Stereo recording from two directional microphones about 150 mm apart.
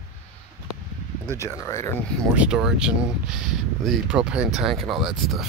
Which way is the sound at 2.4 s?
5° right (ahead or behind).